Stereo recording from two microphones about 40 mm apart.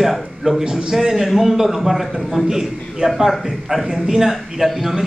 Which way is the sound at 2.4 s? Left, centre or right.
Centre.